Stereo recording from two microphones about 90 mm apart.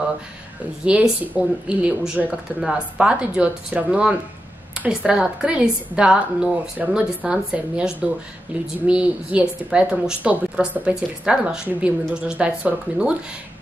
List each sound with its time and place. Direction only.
0.8 s a woman's voice: 15° right (ahead or behind)